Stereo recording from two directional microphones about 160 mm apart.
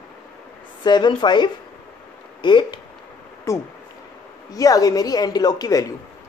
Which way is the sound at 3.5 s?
20° left (ahead or behind).